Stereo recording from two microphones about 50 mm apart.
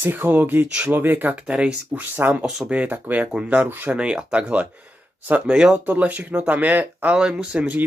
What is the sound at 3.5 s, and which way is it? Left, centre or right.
Speech, right.